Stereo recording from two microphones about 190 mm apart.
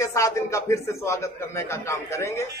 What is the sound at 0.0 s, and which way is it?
A man's voice, 15° left (ahead or behind).